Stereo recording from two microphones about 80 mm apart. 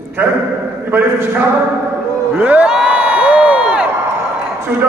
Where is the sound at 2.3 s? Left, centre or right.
Centre.